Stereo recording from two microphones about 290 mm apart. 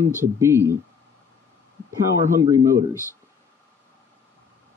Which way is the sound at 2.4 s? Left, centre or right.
Centre.